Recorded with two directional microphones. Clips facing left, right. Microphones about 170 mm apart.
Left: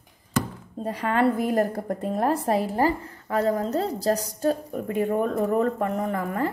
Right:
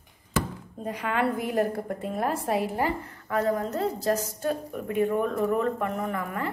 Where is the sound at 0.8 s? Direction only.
35° left (ahead or behind).